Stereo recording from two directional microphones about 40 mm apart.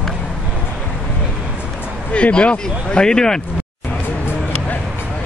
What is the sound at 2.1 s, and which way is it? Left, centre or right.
Speech, left.